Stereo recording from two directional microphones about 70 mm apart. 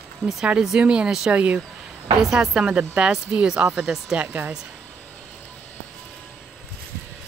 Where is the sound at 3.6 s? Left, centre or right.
Right.